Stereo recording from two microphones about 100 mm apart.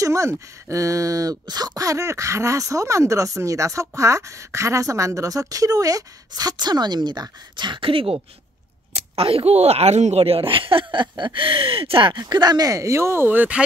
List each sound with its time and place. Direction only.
0.0 s a woman's voice: 30° right (ahead or behind)